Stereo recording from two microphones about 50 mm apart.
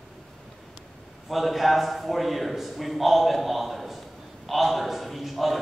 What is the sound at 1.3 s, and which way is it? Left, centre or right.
A man's voice, centre.